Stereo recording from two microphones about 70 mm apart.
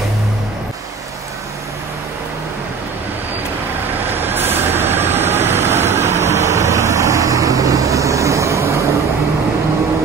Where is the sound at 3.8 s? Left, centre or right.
Right.